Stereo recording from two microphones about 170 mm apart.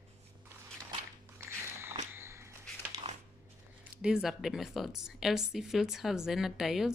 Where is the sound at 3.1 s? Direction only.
40° right (ahead or behind).